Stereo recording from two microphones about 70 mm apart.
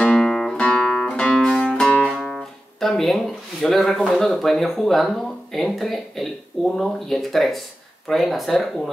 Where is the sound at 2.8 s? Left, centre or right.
Centre.